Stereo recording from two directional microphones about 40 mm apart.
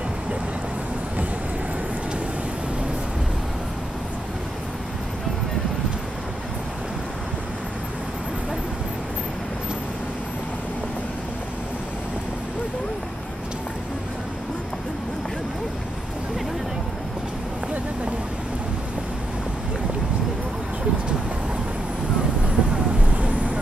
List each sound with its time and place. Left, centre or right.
22.6 s vehicle: right